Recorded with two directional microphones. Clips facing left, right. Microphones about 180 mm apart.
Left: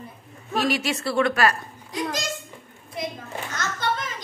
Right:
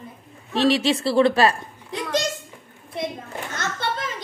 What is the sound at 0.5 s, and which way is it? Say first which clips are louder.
A child's voice: right 5 dB; 30° right (ahead or behind).